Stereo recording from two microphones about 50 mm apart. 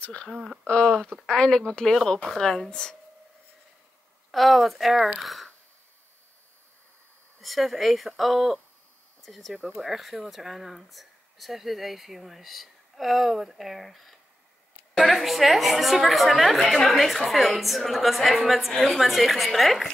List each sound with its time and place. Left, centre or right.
0.0 s speech: left
4.3 s speech: centre
7.4 s speech: centre